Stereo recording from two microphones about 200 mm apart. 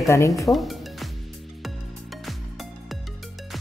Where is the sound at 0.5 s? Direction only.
Centre (ahead or behind).